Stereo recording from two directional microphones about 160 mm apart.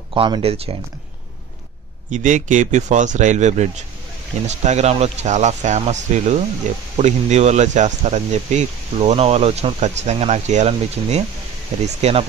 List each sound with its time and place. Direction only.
0.1 s speech: 35° right (ahead or behind)
2.0 s speech: 50° right (ahead or behind)